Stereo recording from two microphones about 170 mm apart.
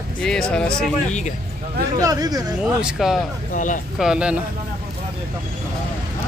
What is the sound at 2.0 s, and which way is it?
Speech, 20° right (ahead or behind).